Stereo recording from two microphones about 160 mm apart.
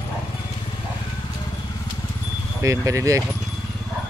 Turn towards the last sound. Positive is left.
turn(degrees=-20)  # may be behind; listen again after turning